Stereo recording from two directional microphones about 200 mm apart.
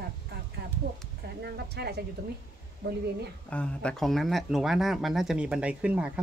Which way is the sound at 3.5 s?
5° left (ahead or behind).